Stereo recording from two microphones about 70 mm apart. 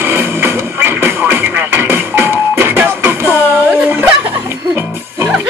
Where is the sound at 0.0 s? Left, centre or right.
Right.